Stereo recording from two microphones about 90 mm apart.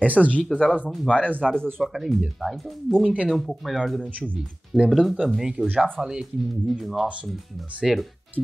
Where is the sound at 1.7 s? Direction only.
Centre (ahead or behind).